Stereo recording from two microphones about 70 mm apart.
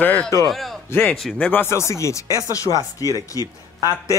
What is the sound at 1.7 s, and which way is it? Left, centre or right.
Speech, left.